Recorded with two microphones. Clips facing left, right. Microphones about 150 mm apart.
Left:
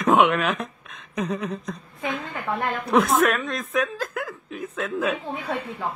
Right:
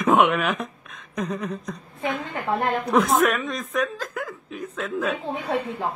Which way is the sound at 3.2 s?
Centre (ahead or behind).